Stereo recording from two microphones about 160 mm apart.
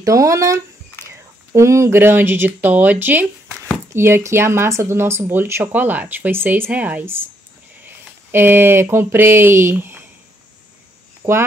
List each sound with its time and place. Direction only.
0.0 s speech: 20° right (ahead or behind)
1.0 s a sound: 15° left (ahead or behind)
1.5 s speech: 20° right (ahead or behind)
11.2 s speech: 20° right (ahead or behind)